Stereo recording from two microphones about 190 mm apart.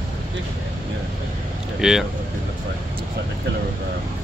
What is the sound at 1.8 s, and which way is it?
Speech, 5° right (ahead or behind).